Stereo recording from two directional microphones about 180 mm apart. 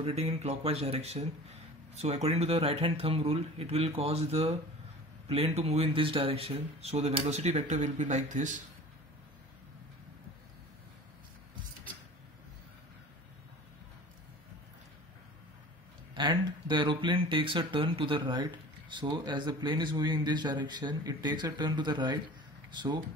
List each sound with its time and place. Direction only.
0.0 s speech: 35° right (ahead or behind)
16.2 s speech: 25° right (ahead or behind)